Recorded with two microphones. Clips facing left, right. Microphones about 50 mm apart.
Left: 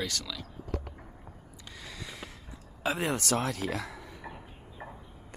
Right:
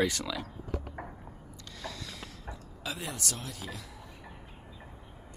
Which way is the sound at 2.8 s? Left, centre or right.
Left.